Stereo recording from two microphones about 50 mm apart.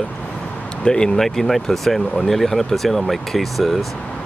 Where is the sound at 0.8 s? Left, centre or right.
Centre.